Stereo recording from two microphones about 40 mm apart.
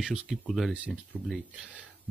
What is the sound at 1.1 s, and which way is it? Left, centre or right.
Speech, left.